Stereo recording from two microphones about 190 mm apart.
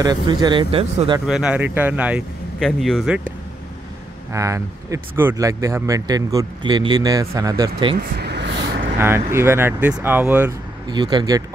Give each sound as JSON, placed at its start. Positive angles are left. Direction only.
{"t": 0.0, "sound": "speech", "side_deg": -20}
{"t": 1.2, "sound": "speech", "side_deg": -5}
{"t": 4.3, "sound": "speech", "side_deg": -15}
{"t": 8.2, "sound": "a sound", "side_deg": -65}
{"t": 9.0, "sound": "speech", "side_deg": -15}
{"t": 10.9, "sound": "speech", "side_deg": -20}